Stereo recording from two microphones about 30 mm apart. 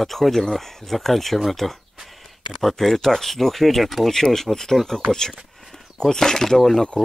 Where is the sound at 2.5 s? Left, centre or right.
Centre.